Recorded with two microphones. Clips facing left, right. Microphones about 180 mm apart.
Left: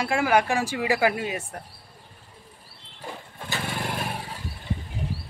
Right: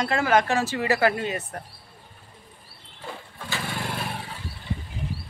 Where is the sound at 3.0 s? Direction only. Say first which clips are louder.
Even; 15° left (ahead or behind).